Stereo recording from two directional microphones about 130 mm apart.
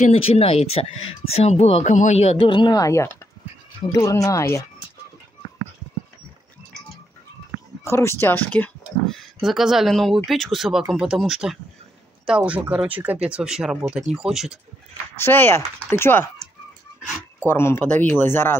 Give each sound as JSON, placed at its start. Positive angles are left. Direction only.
{"t": 0.0, "sound": "speech", "side_deg": 50}
{"t": 7.8, "sound": "speech", "side_deg": 20}
{"t": 15.1, "sound": "speech", "side_deg": 15}
{"t": 17.4, "sound": "speech", "side_deg": 20}